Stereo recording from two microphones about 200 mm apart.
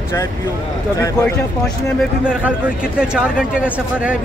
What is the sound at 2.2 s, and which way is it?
Speech, 5° right (ahead or behind).